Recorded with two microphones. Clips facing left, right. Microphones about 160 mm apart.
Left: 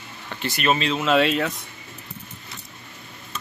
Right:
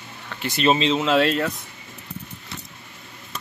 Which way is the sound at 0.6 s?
25° right (ahead or behind).